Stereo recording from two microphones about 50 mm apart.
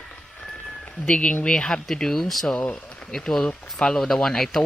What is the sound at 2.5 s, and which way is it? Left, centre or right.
Speech, left.